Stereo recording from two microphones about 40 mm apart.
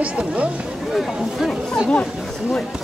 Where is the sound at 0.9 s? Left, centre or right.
Centre.